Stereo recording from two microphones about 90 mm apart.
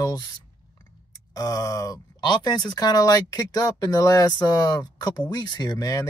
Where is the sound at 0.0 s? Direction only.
50° left (ahead or behind).